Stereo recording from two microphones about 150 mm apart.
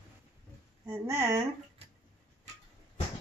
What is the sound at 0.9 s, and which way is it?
Speech, 15° right (ahead or behind).